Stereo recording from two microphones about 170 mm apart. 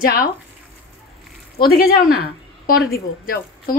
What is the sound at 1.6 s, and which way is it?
A woman's voice, 60° left (ahead or behind).